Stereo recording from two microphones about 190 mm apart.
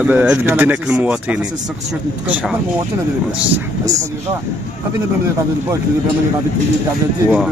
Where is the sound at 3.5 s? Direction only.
20° right (ahead or behind).